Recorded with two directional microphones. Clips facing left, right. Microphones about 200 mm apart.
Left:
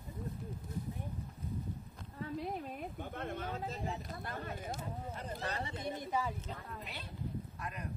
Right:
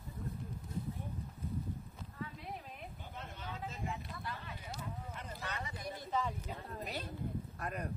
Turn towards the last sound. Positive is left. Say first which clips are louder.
# right 3 dB
turn(degrees=-55)  # may be behind; listen again after turning